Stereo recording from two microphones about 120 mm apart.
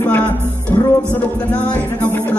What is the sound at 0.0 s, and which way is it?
Music, 10° left (ahead or behind).